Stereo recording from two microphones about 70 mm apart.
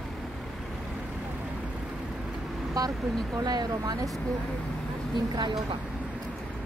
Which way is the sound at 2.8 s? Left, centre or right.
Right.